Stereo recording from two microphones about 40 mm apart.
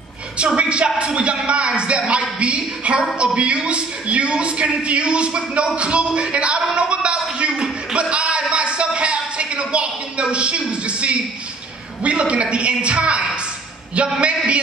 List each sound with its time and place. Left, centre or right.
0.6 s a man's voice: right